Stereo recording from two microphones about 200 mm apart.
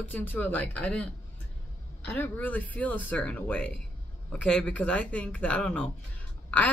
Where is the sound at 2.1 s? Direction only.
10° left (ahead or behind).